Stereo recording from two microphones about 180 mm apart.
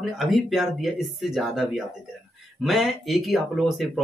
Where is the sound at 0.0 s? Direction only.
Centre (ahead or behind).